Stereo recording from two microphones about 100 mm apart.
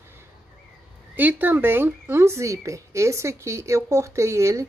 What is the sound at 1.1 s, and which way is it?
Speech, 20° right (ahead or behind).